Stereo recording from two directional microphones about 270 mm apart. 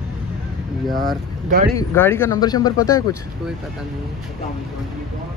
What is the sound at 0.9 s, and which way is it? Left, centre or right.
Speech, right.